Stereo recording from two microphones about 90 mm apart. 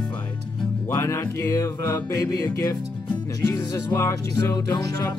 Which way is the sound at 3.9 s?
30° left (ahead or behind).